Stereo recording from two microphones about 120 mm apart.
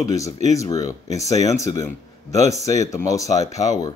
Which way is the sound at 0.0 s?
30° left (ahead or behind).